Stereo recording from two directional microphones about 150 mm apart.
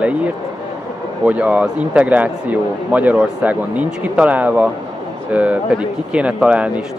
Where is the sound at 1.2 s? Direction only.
10° right (ahead or behind).